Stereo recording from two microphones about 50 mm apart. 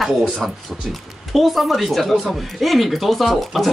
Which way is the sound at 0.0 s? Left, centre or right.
Centre.